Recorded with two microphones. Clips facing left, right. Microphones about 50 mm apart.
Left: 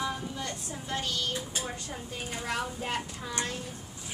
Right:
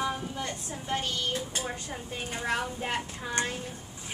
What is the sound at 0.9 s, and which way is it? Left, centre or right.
Speech, right.